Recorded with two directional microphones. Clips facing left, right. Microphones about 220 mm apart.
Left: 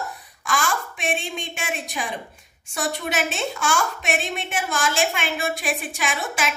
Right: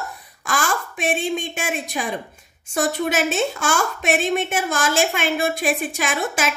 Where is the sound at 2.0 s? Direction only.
45° right (ahead or behind).